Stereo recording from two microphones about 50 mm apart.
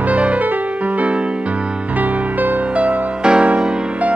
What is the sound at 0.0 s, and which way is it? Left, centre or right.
Music, right.